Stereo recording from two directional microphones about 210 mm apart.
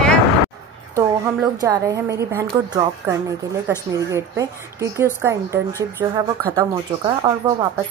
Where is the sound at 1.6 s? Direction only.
15° right (ahead or behind).